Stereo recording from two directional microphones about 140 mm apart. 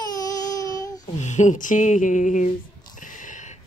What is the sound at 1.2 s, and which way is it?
Speech, 60° left (ahead or behind).